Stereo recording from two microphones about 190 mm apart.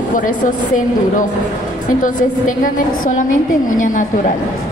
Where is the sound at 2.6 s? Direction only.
45° left (ahead or behind).